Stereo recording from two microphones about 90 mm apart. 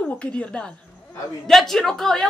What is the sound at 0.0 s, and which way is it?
Speech, 10° left (ahead or behind).